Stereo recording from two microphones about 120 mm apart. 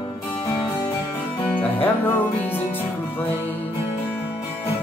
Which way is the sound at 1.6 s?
15° left (ahead or behind).